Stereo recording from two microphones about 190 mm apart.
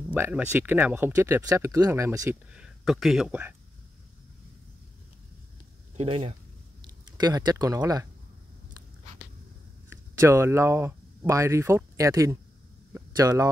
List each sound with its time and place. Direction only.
0.1 s speech: 10° right (ahead or behind)
2.5 s speech: centre (ahead or behind)
5.9 s speech: 30° right (ahead or behind)
7.2 s speech: 20° right (ahead or behind)
9.8 s speech: 15° right (ahead or behind)
12.9 s a sound: 20° right (ahead or behind)